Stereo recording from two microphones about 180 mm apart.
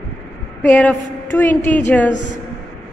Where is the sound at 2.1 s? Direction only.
80° left.